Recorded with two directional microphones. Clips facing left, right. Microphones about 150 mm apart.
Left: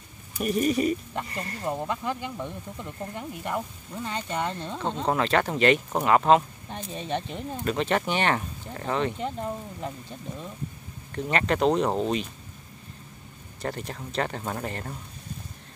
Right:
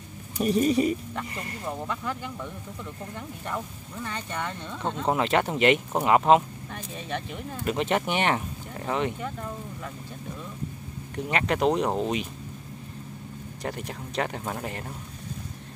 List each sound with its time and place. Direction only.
0.4 s speech: 25° right (ahead or behind)
1.7 s speech: 20° left (ahead or behind)
5.0 s speech: 15° right (ahead or behind)
6.7 s speech: 25° left (ahead or behind)
7.6 s speech: 15° right (ahead or behind)
9.2 s speech: 25° left (ahead or behind)
11.2 s speech: 10° right (ahead or behind)
13.6 s speech: 10° right (ahead or behind)